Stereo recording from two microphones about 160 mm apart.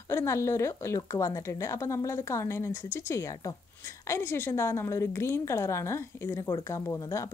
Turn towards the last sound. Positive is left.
turn(degrees=20)  # may be behind; listen again after turning